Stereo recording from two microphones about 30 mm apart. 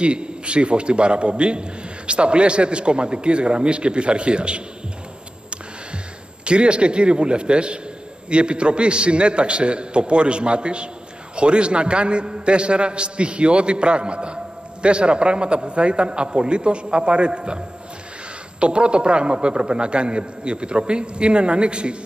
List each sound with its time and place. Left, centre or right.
0.0 s a man's voice: right
6.4 s a man's voice: right